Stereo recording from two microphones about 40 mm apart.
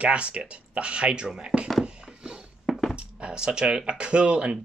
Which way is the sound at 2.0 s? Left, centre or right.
Centre.